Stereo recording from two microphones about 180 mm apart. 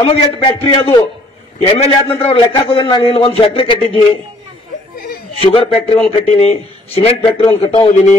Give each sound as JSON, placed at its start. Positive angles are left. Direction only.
{"t": 0.0, "sound": "a man's voice", "side_deg": 30}
{"t": 5.3, "sound": "a man's voice", "side_deg": 30}